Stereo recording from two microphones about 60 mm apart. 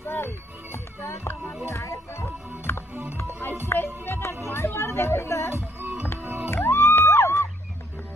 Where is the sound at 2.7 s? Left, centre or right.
Left.